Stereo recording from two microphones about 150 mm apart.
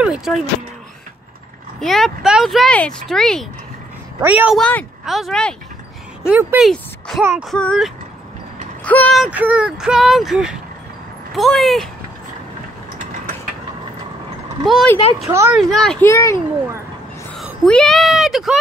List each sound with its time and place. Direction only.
0.0 s speech: 5° right (ahead or behind)
1.8 s speech: centre (ahead or behind)
4.2 s speech: 10° right (ahead or behind)
4.6 s a child's voice: 10° left (ahead or behind)
6.2 s speech: 5° right (ahead or behind)
6.7 s speech: 5° left (ahead or behind)
9.1 s speech: 5° right (ahead or behind)
14.6 s speech: centre (ahead or behind)
15.2 s speech: 20° right (ahead or behind)
15.5 s speech: centre (ahead or behind)
16.0 s a child's voice: 20° left (ahead or behind)
17.6 s speech: 5° left (ahead or behind)